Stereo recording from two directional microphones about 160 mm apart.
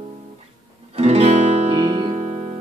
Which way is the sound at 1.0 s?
40° right (ahead or behind).